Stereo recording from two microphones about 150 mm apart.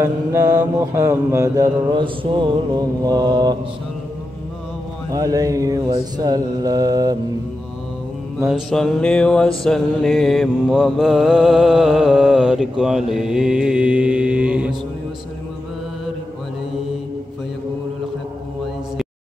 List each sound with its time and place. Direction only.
0.0 s mantra: 20° right (ahead or behind)
5.1 s mantra: 25° right (ahead or behind)
8.5 s mantra: centre (ahead or behind)